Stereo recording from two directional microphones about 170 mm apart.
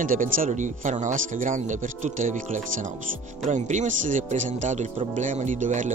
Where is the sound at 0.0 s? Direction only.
55° right (ahead or behind).